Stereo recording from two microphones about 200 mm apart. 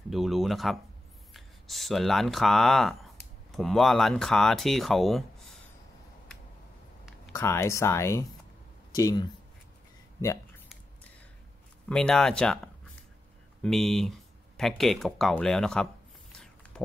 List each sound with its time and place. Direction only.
0.1 s speech: centre (ahead or behind)
7.3 s speech: 15° left (ahead or behind)
11.9 s speech: 5° left (ahead or behind)
13.6 s a sound: centre (ahead or behind)